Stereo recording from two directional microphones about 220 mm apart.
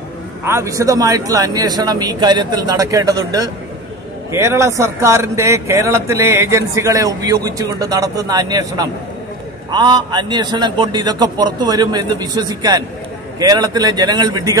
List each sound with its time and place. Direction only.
0.5 s a man's voice: 15° right (ahead or behind)